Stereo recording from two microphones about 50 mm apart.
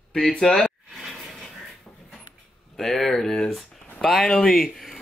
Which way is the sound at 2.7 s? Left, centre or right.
Centre.